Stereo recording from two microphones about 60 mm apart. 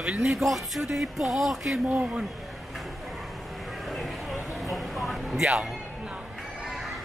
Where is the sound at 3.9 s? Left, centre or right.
Centre.